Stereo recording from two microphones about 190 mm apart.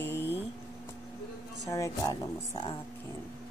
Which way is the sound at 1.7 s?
15° left (ahead or behind).